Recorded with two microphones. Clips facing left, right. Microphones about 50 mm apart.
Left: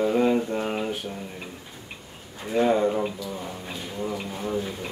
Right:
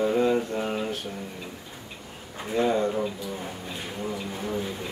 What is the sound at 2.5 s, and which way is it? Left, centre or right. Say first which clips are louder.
Speech: left 3 dB; centre.